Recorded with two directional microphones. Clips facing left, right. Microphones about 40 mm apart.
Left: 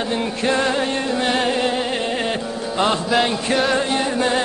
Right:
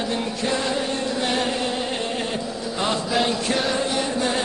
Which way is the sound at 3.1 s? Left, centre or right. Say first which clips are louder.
Left 4 dB; centre.